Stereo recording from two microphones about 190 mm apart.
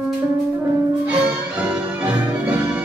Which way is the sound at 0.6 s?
5° right (ahead or behind).